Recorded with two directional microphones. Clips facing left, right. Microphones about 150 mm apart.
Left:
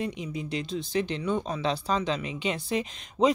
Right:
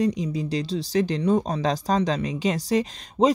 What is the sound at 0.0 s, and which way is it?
Speech, 35° right (ahead or behind).